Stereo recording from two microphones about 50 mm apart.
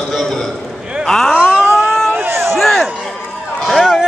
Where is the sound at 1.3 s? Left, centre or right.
Right.